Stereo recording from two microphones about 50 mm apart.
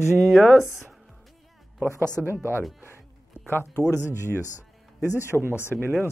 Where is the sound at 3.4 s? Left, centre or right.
Left.